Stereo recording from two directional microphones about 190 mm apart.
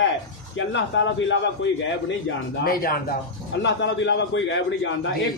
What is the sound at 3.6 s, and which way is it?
A man's voice, 70° left (ahead or behind).